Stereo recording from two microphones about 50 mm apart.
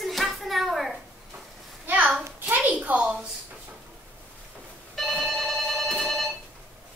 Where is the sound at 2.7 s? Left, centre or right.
Right.